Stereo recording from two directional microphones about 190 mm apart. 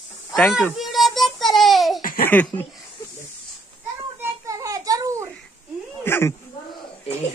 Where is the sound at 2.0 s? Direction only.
50° left (ahead or behind).